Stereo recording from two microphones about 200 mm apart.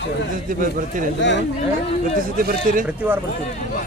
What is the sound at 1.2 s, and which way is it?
Speech, 60° left (ahead or behind).